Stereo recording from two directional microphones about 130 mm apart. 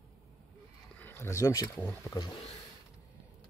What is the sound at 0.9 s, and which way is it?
Speech, 15° left (ahead or behind).